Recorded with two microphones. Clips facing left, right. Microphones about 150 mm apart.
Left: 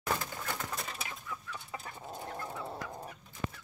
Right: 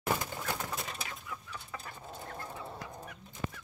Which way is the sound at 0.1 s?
15° right (ahead or behind).